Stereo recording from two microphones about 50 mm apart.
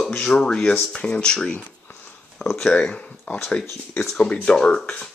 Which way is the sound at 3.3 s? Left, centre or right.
Left.